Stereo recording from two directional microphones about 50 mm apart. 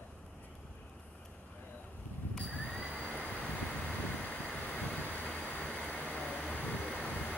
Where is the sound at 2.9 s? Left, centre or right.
Left.